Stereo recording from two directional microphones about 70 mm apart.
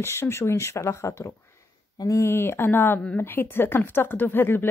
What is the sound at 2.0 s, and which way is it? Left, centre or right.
Speech, left.